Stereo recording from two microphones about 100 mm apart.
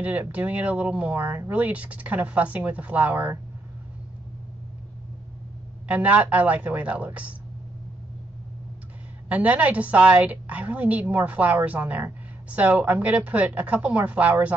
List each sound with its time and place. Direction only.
0.0 s a woman's voice: 15° right (ahead or behind)
5.9 s a woman's voice: 15° right (ahead or behind)
9.3 s a woman's voice: 15° right (ahead or behind)